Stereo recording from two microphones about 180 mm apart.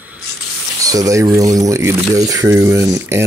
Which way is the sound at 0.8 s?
20° right (ahead or behind).